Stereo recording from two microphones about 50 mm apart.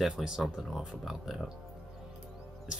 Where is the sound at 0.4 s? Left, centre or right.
Centre.